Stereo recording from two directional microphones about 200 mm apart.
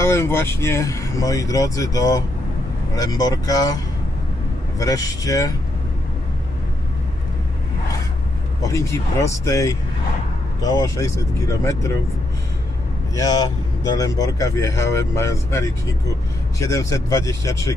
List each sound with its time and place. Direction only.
0.0 s speech: 15° left (ahead or behind)
8.6 s speech: 15° left (ahead or behind)
13.1 s speech: 20° left (ahead or behind)